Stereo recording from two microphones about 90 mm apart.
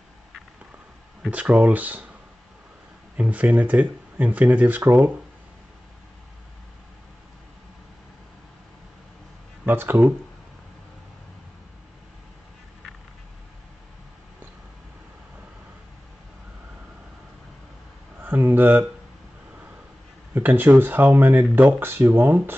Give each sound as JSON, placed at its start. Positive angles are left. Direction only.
{"t": 1.3, "sound": "speech", "side_deg": -15}
{"t": 3.2, "sound": "speech", "side_deg": -15}
{"t": 9.7, "sound": "speech", "side_deg": -25}
{"t": 18.2, "sound": "a sound", "side_deg": -20}
{"t": 20.3, "sound": "speech", "side_deg": -20}